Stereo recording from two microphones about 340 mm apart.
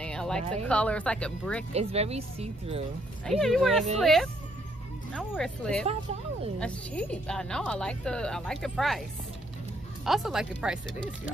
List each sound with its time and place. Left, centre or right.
0.0 s a sound: centre
0.7 s a woman's voice: centre
1.7 s speech: centre
3.3 s a woman's voice: centre
10.0 s a woman's voice: centre